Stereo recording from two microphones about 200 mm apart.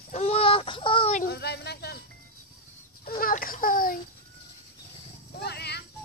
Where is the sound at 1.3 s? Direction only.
55° left (ahead or behind).